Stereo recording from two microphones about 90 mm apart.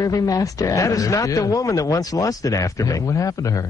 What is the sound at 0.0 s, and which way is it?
A man's voice, 40° left (ahead or behind).